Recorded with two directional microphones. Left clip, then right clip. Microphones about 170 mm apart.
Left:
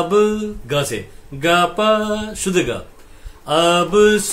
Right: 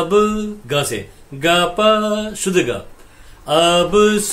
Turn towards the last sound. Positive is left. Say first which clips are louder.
# even
turn(degrees=0)  # may be behind; listen again after turning